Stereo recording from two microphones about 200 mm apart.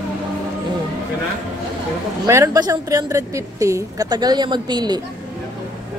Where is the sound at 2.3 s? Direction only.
15° right (ahead or behind).